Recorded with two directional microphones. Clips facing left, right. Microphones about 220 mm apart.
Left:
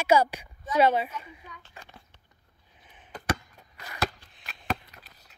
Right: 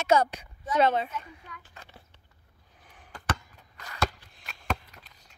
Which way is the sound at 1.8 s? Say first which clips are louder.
Left 2 dB; 10° left (ahead or behind).